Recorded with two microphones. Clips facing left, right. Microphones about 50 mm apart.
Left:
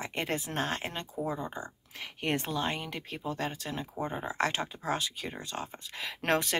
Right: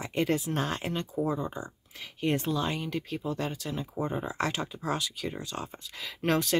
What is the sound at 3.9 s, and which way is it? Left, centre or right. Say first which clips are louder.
Speech: even; left.